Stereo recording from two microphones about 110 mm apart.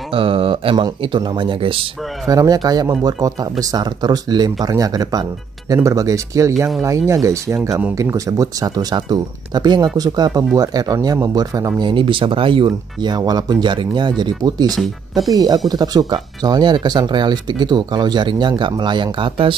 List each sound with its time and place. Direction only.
0.1 s speech: 55° right (ahead or behind)
2.2 s speech: 30° right (ahead or behind)
11.9 s speech: 50° right (ahead or behind)